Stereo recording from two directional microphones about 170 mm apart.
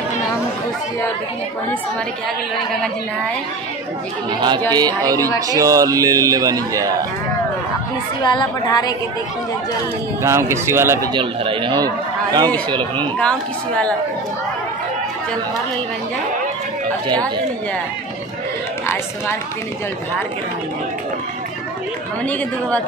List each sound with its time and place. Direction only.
4.3 s a man's voice: 25° right (ahead or behind)
8.2 s a woman's voice: 25° left (ahead or behind)
10.2 s speech: 15° right (ahead or behind)
11.1 s a man's voice: 30° right (ahead or behind)
13.2 s speech: 5° left (ahead or behind)
22.2 s speech: 10° left (ahead or behind)